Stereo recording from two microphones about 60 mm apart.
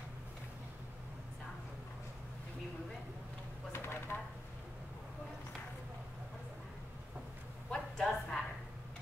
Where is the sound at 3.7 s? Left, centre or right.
Left.